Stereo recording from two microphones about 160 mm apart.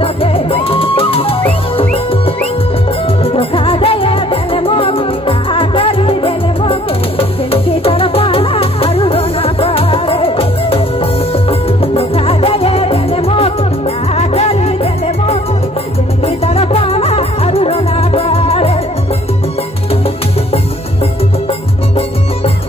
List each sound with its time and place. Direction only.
0.0 s music: 35° left (ahead or behind)
16.3 s music: 40° left (ahead or behind)